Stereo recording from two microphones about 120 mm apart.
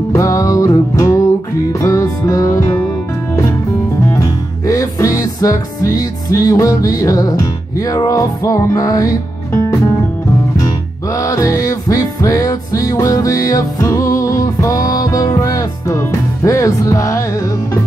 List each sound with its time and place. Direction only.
0.1 s music: 25° left (ahead or behind)
4.1 s music: 30° left (ahead or behind)
11.1 s music: 30° left (ahead or behind)